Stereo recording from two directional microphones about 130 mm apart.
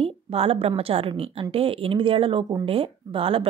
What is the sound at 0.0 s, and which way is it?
Speech, 50° right (ahead or behind).